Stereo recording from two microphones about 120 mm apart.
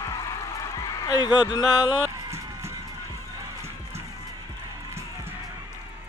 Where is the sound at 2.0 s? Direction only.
25° right (ahead or behind).